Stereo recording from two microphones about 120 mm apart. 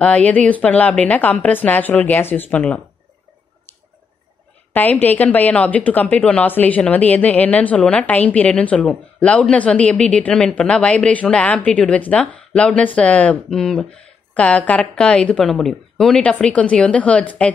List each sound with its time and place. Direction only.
0.0 s a woman's voice: 10° left (ahead or behind)
4.7 s a woman's voice: 15° left (ahead or behind)